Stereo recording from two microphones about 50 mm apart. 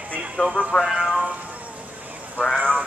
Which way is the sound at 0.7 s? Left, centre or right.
Centre.